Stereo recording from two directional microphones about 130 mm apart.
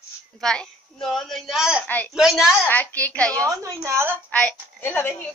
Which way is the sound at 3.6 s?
20° right (ahead or behind).